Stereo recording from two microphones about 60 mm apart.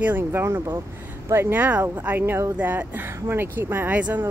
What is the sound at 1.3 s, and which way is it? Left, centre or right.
Speech, right.